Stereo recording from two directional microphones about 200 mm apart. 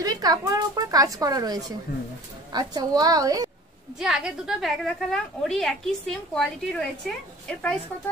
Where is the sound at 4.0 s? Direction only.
5° right (ahead or behind).